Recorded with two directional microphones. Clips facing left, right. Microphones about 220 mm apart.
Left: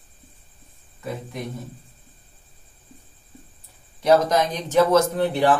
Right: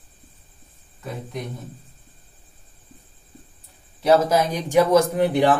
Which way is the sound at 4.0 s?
5° right (ahead or behind).